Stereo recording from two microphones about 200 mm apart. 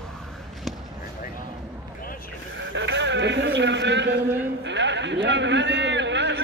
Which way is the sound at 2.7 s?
65° right (ahead or behind).